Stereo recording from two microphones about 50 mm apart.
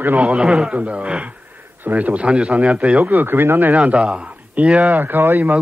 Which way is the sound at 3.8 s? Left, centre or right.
Centre.